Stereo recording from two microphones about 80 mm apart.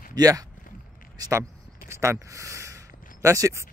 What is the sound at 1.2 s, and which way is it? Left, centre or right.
Speech, right.